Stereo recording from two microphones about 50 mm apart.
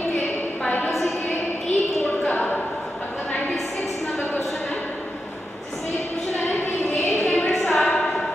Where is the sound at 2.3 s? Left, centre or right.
Left.